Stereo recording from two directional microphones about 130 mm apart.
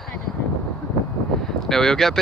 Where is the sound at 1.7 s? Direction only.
5° left (ahead or behind).